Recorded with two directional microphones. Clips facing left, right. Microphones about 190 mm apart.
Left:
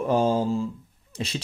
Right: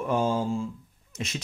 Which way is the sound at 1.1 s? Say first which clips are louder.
Left 3 dB; 30° left (ahead or behind).